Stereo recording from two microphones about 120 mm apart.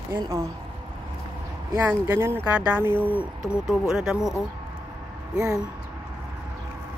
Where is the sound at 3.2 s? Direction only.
5° right (ahead or behind).